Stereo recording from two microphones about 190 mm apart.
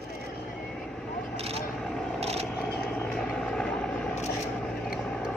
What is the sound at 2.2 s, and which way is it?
Vehicle, 35° right (ahead or behind).